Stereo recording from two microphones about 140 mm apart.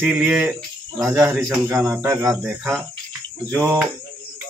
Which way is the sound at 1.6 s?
20° right (ahead or behind).